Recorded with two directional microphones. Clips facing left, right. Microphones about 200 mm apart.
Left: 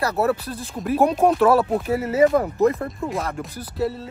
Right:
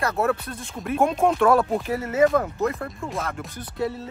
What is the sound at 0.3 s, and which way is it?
Speech, 30° left (ahead or behind).